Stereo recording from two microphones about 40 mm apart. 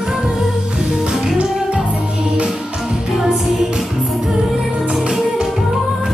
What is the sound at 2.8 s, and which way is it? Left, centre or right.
Music, centre.